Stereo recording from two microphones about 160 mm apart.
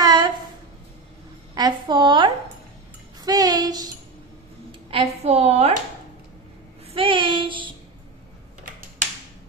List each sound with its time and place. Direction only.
0.0 s a sound: 25° right (ahead or behind)
1.5 s a woman's voice: 25° right (ahead or behind)
3.2 s music: 25° right (ahead or behind)
4.9 s a woman's voice: 40° right (ahead or behind)
6.9 s child singing: 30° right (ahead or behind)